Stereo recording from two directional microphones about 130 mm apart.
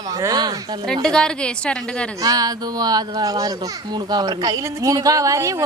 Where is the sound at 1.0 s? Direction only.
5° left (ahead or behind).